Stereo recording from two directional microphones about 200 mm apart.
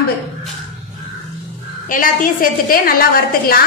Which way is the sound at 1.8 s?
40° left (ahead or behind).